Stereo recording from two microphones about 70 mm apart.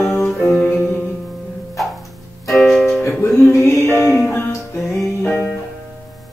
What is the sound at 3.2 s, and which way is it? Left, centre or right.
Music, left.